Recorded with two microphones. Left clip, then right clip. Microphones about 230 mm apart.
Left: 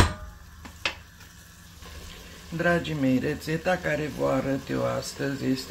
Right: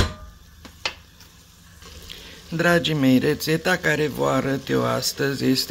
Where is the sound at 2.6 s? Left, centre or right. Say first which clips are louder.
Right 6 dB; right.